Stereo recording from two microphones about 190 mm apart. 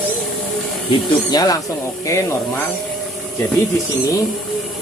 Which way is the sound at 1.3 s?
20° left (ahead or behind).